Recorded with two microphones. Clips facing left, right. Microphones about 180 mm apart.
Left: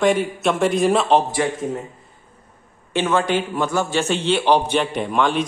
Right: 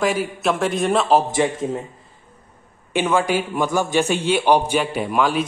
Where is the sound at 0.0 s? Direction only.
5° right (ahead or behind).